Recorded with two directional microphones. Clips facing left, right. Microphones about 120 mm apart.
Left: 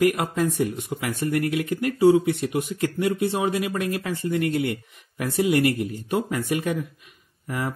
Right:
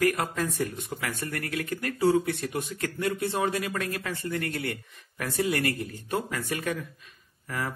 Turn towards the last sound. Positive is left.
turn(degrees=15)  # may be behind; listen again after turning